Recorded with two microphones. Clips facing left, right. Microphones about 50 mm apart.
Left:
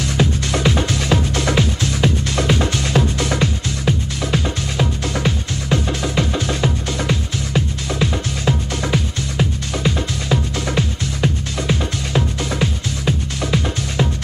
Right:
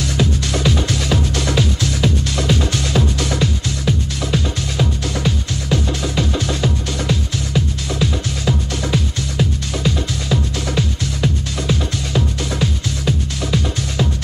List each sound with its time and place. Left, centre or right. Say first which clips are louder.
0.2 s music: left 1 dB; left